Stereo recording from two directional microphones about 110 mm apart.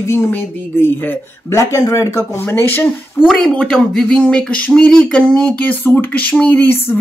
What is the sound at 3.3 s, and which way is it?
Speech, 10° left (ahead or behind).